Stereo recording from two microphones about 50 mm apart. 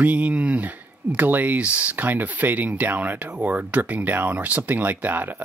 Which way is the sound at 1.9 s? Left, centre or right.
Right.